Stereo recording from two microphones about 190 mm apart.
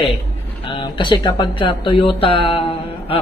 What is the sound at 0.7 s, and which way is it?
A man's voice, 25° left (ahead or behind).